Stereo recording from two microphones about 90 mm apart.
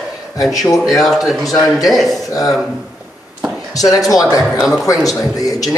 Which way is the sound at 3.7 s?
40° left (ahead or behind).